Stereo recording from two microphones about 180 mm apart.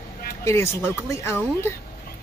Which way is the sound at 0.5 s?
15° left (ahead or behind).